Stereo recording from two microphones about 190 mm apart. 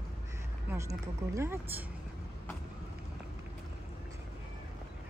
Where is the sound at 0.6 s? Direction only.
15° right (ahead or behind).